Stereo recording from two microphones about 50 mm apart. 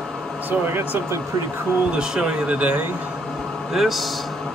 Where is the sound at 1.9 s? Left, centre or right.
Centre.